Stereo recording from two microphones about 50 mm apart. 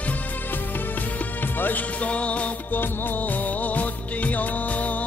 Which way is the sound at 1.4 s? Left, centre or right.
Left.